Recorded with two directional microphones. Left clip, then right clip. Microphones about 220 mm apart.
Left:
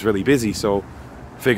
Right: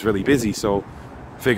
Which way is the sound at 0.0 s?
10° left (ahead or behind).